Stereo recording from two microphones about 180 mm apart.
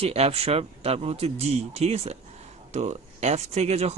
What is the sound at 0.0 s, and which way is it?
Speech, 35° right (ahead or behind).